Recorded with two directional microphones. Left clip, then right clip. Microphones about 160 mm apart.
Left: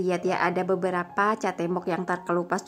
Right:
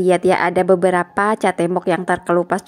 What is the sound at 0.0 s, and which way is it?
A woman's voice, 35° right (ahead or behind).